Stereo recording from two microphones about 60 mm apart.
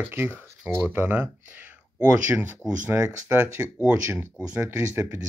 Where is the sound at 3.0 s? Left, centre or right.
Centre.